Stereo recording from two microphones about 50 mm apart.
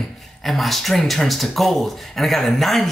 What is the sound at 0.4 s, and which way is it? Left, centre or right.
Speech, centre.